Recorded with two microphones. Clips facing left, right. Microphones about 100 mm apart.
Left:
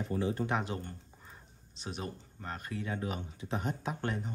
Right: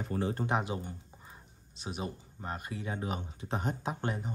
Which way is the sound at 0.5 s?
15° right (ahead or behind).